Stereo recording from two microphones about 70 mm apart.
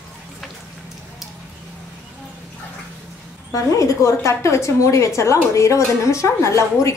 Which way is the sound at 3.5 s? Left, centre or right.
Left.